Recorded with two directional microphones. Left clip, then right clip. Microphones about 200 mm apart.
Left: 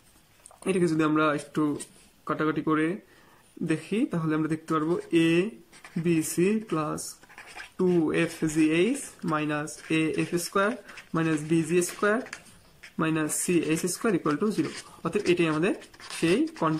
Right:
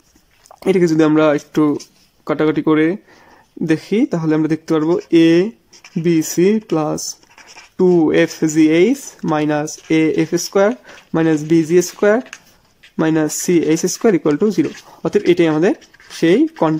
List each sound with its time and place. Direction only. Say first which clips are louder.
0.6 s speech: right 12 dB; 35° right (ahead or behind)